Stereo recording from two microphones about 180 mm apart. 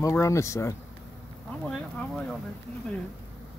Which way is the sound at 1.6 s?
5° left (ahead or behind).